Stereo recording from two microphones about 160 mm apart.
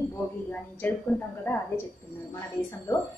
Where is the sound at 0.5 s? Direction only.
10° left (ahead or behind).